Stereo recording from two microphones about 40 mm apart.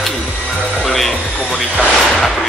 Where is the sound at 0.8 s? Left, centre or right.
Centre.